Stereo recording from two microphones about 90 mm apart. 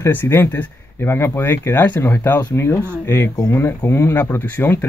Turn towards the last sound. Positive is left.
turn(degrees=25)  # may be behind; listen again after turning